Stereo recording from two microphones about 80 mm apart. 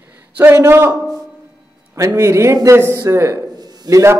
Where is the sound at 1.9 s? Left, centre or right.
Right.